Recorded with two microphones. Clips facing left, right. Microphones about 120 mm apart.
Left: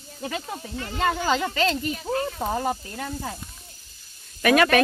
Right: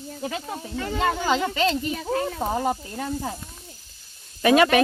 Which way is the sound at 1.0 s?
15° right (ahead or behind).